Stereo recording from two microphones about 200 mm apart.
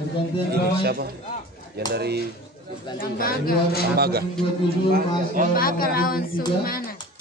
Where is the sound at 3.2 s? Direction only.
45° left (ahead or behind).